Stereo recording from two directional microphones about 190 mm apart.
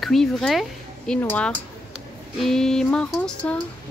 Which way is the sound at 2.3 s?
Centre (ahead or behind).